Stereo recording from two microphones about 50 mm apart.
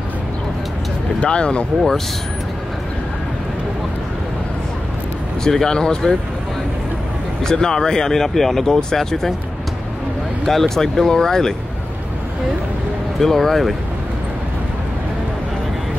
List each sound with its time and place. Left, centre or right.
1.2 s speech: left
5.4 s speech: centre
7.4 s speech: centre
10.4 s speech: centre
13.2 s speech: centre